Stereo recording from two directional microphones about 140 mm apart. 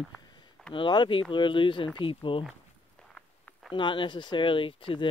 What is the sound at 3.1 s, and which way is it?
Walk, 5° left (ahead or behind).